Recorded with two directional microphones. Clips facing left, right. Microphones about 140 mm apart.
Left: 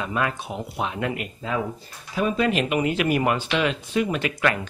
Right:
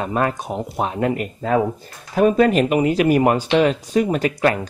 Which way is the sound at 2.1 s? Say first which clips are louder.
Right 8 dB; 45° right (ahead or behind).